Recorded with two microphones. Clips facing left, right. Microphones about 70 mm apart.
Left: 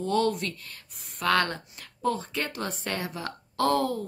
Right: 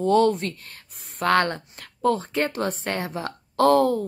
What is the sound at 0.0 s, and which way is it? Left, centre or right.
A woman's voice, right.